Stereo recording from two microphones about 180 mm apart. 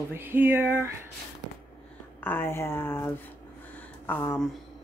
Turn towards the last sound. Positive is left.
turn(degrees=15)  # may be behind; listen again after turning